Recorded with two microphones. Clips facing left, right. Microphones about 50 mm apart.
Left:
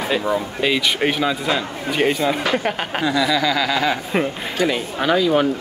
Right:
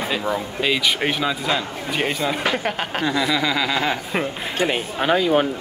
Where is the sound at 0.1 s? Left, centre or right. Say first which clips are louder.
Left 3 dB; centre.